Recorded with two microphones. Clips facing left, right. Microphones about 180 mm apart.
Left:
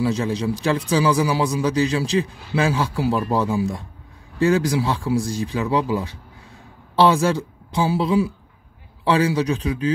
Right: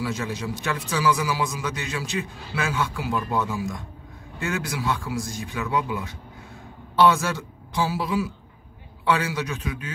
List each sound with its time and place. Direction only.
0.0 s a man's voice: 30° left (ahead or behind)